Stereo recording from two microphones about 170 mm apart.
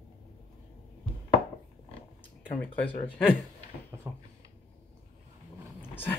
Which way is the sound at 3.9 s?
15° right (ahead or behind).